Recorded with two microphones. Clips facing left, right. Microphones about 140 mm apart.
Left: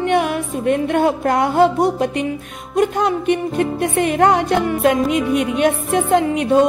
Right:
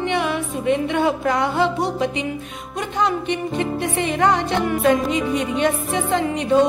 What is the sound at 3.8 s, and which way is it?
Music, 55° left (ahead or behind).